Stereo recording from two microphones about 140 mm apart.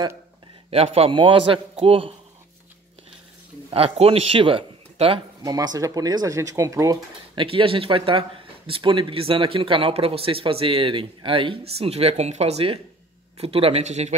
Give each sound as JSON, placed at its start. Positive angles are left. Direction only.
{"t": 0.7, "sound": "speech", "side_deg": -45}
{"t": 3.7, "sound": "a man's voice", "side_deg": -45}
{"t": 5.4, "sound": "speech", "side_deg": -30}
{"t": 7.3, "sound": "a man's voice", "side_deg": -40}